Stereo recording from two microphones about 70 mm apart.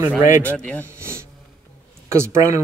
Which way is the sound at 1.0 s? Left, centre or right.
Right.